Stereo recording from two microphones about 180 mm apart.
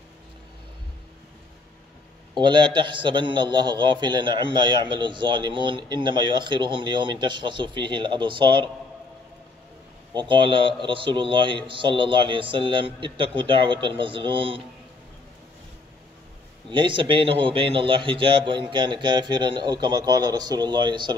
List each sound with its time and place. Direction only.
2.3 s a man's voice: 25° right (ahead or behind)
10.1 s a man's voice: 30° right (ahead or behind)
16.7 s a man's voice: 25° right (ahead or behind)